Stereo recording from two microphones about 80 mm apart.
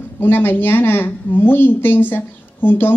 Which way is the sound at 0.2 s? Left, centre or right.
Left.